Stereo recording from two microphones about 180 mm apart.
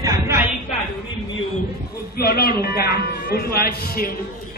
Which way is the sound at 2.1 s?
60° left (ahead or behind).